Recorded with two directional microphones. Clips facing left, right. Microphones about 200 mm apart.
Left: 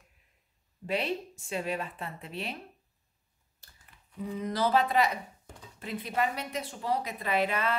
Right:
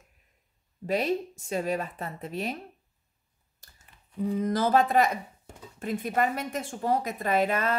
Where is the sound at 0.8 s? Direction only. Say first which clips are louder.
Right 5 dB; 40° right (ahead or behind).